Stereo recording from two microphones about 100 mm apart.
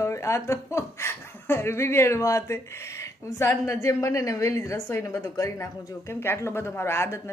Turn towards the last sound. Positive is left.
turn(degrees=25)  # may be behind; listen again after turning